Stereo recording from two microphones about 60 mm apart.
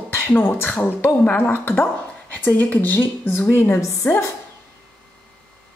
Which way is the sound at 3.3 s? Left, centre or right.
Left.